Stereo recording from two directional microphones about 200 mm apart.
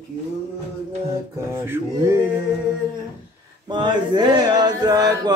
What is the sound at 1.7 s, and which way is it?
Music, 15° right (ahead or behind).